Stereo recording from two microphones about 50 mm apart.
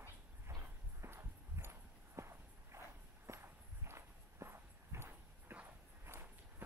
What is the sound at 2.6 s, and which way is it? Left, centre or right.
Walk, right.